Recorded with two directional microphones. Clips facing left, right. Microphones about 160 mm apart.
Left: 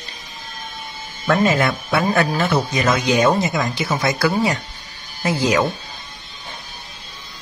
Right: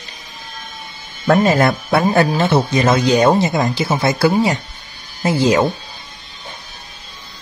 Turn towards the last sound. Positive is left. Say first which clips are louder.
# right 4 dB
turn(degrees=-30)  # may be behind; listen again after turning